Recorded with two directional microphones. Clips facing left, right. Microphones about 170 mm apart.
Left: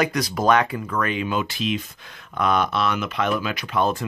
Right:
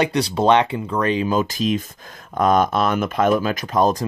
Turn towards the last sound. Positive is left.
turn(degrees=-40)  # may be behind; listen again after turning